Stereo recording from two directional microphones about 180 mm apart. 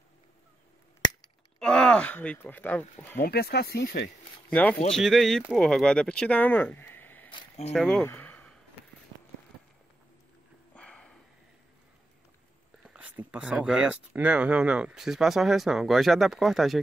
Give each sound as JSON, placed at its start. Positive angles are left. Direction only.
{"t": 1.6, "sound": "speech", "side_deg": 5}
{"t": 3.2, "sound": "speech", "side_deg": 60}
{"t": 4.5, "sound": "speech", "side_deg": 10}
{"t": 7.3, "sound": "a sound", "side_deg": 35}
{"t": 7.7, "sound": "speech", "side_deg": 5}
{"t": 10.7, "sound": "a sound", "side_deg": 5}
{"t": 12.8, "sound": "speech", "side_deg": -5}